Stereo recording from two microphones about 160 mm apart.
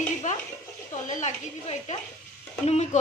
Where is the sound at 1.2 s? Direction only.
40° left (ahead or behind).